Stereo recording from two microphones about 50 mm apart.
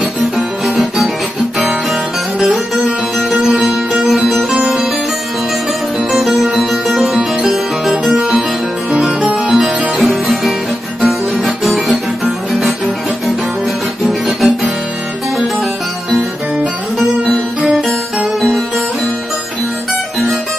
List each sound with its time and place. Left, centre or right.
0.7 s music: centre
1.6 s guitar: centre
2.5 s music: centre
6.1 s music: centre
8.2 s music: centre
9.3 s music: centre
12.5 s guitar: centre
14.0 s music: centre